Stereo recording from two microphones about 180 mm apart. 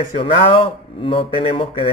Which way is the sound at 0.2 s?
30° left (ahead or behind).